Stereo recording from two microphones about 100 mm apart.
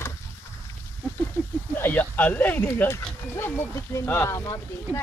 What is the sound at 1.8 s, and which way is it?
Speech, 20° left (ahead or behind).